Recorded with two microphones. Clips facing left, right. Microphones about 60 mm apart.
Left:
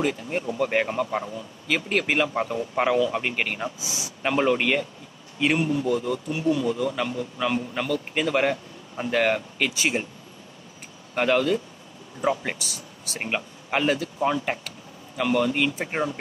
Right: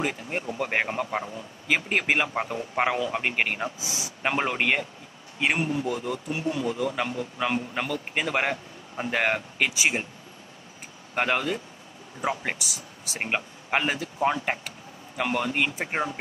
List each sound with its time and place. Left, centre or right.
0.0 s speech: centre
11.1 s speech: centre